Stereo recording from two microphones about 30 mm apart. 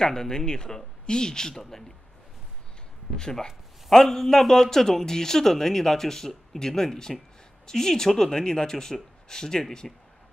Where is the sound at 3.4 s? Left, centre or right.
Centre.